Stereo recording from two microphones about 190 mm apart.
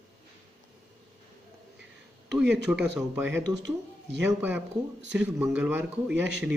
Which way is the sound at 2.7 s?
5° right (ahead or behind).